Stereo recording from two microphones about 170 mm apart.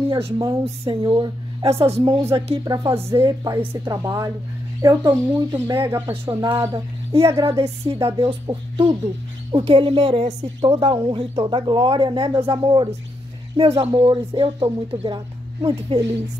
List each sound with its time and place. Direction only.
0.1 s a woman's voice: 25° right (ahead or behind)
2.6 s a woman's voice: 20° right (ahead or behind)
7.1 s a woman's voice: 35° right (ahead or behind)
13.6 s speech: 35° right (ahead or behind)